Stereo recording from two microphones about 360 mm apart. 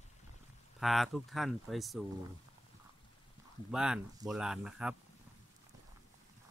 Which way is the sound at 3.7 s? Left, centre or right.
Centre.